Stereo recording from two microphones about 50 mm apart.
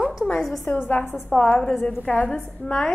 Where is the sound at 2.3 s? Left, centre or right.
Centre.